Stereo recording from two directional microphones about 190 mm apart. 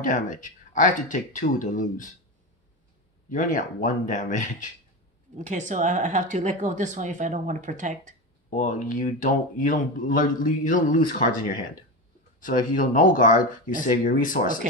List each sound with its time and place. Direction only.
0.0 s speech: 45° left (ahead or behind)
3.3 s speech: 45° left (ahead or behind)
5.4 s speech: 40° right (ahead or behind)
8.5 s speech: 45° left (ahead or behind)
12.4 s speech: 45° left (ahead or behind)